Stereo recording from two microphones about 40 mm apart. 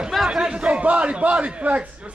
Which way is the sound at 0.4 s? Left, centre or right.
Right.